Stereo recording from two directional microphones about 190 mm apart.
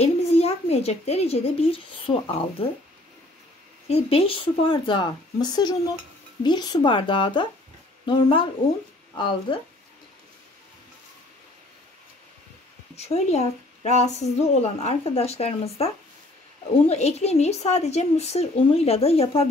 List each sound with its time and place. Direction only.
0.0 s a child's voice: 35° left (ahead or behind)
3.9 s speech: 30° left (ahead or behind)
12.9 s a woman's voice: 35° left (ahead or behind)